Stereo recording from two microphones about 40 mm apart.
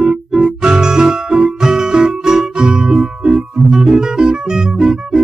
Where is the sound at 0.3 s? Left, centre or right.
Centre.